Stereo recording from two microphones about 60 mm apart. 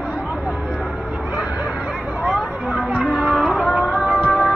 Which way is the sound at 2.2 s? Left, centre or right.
Centre.